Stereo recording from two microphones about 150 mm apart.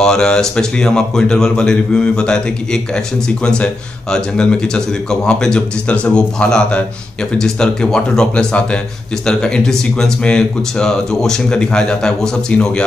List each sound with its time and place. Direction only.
0.0 s a man's voice: 5° left (ahead or behind)